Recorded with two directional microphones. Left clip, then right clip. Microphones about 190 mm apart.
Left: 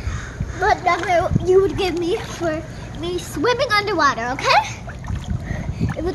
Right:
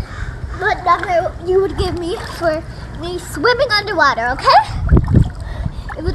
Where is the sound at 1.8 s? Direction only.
15° left (ahead or behind).